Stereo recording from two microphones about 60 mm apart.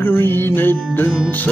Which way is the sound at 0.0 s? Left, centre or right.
Left.